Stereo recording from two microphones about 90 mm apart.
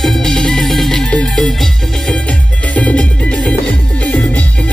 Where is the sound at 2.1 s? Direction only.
15° left (ahead or behind).